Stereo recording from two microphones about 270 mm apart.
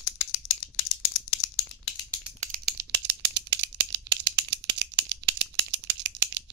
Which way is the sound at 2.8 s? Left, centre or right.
Right.